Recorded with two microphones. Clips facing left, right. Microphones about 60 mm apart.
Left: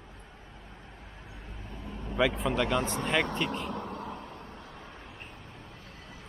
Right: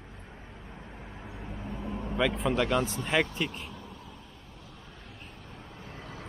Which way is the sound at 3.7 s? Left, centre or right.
Left.